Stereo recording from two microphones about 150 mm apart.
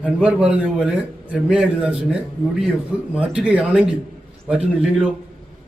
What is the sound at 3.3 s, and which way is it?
Speech, 5° right (ahead or behind).